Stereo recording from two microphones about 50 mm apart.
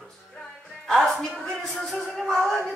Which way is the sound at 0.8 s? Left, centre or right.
Centre.